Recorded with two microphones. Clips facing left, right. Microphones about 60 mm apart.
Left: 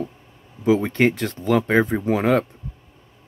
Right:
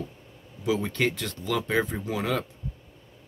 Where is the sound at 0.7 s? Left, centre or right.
Left.